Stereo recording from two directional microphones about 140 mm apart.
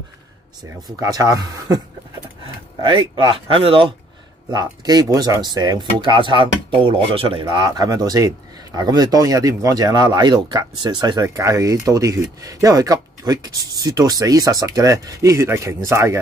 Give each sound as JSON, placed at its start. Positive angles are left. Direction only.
{"t": 0.8, "sound": "speech", "side_deg": -25}
{"t": 4.5, "sound": "speech", "side_deg": -30}